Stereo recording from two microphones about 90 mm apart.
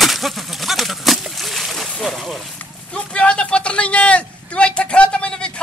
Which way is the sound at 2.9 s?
10° left (ahead or behind).